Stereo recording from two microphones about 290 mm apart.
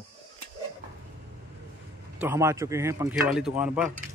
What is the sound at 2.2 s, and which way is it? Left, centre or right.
Speech, centre.